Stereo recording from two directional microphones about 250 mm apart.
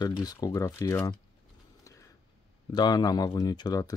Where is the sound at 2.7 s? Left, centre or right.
Centre.